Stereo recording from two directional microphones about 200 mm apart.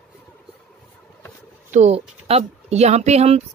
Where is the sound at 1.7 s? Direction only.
30° right (ahead or behind).